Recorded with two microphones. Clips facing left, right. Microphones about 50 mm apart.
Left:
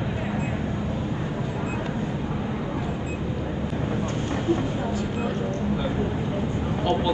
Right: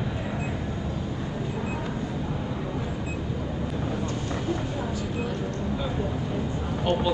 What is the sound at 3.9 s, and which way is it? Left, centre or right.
Vehicle, left.